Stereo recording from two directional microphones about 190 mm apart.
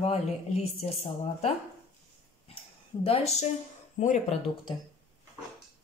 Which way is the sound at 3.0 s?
30° left (ahead or behind).